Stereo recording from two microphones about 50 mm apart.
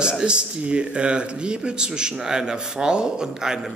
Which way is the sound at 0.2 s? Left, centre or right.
Centre.